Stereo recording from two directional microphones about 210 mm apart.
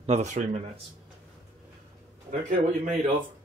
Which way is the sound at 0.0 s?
30° right (ahead or behind).